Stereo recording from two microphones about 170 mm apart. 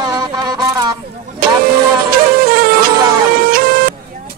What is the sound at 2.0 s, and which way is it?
Music, 60° right (ahead or behind).